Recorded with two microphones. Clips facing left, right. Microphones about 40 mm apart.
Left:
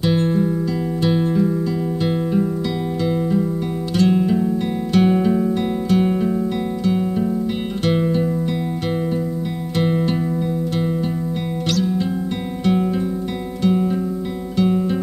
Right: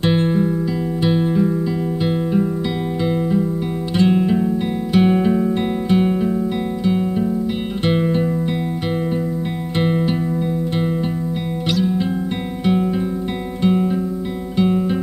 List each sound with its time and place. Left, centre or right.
0.1 s music: right
3.1 s music: centre
9.8 s music: centre
11.7 s music: centre
13.6 s music: centre